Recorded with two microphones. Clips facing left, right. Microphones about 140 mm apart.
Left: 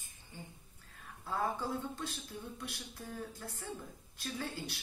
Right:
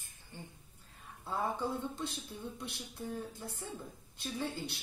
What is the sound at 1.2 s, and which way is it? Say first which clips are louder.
Speech: right 1 dB; 25° right (ahead or behind).